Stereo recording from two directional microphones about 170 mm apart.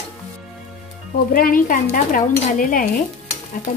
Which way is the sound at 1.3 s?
55° left (ahead or behind).